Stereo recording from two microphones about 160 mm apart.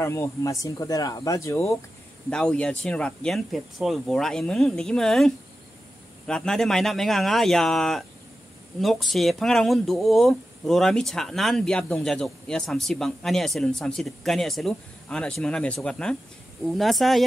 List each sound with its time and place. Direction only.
0.0 s speech: 15° left (ahead or behind)
2.2 s speech: 5° left (ahead or behind)